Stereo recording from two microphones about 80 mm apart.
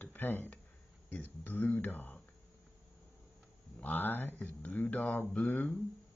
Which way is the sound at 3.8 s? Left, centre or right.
Left.